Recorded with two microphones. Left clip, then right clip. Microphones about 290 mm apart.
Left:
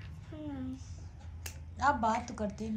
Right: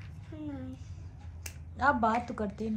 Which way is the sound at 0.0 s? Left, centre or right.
Centre.